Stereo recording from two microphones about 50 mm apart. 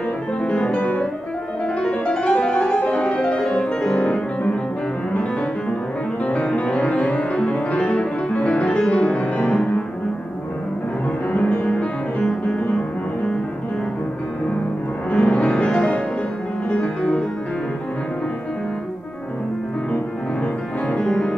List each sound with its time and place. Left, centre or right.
0.4 s music: left
0.7 s music: left
1.8 s music: left
11.3 s music: left
15.0 s music: left
21.0 s music: centre